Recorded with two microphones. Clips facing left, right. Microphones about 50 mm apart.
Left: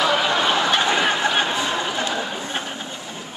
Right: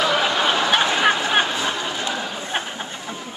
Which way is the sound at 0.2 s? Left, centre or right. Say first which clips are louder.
Even; centre.